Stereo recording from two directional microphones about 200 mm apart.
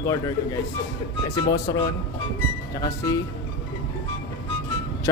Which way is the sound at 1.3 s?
20° left (ahead or behind).